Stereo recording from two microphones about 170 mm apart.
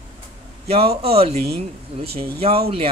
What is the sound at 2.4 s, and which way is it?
Speech, 35° right (ahead or behind).